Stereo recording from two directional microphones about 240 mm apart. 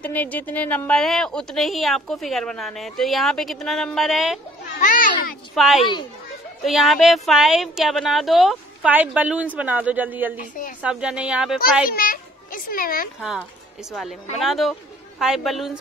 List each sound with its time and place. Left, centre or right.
0.0 s a woman's voice: centre
4.7 s a child's voice: left
5.5 s a woman's voice: centre
11.9 s a child's voice: left
13.2 s a woman's voice: centre